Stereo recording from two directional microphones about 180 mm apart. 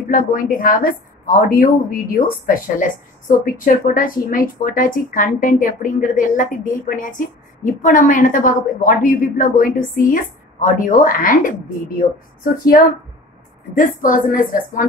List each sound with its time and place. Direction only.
0.1 s a woman's voice: 50° left (ahead or behind)
13.7 s a woman's voice: 45° left (ahead or behind)